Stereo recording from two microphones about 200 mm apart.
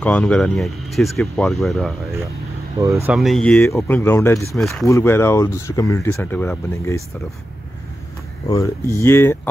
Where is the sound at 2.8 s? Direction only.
15° right (ahead or behind).